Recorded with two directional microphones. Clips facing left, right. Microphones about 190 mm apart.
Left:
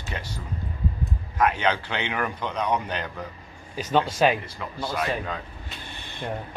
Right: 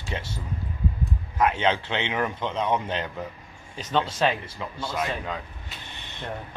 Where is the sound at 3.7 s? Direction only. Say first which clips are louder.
Left 3 dB; 10° left (ahead or behind).